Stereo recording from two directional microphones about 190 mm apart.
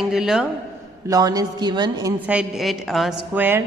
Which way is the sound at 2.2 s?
5° right (ahead or behind).